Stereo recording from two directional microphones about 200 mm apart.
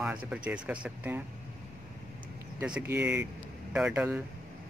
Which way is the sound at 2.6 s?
10° right (ahead or behind).